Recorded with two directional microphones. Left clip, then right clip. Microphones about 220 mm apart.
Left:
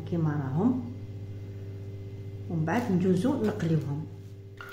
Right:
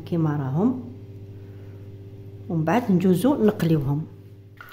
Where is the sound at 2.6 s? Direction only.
50° right (ahead or behind).